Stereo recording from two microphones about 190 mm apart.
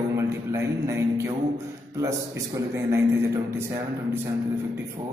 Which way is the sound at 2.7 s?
15° right (ahead or behind).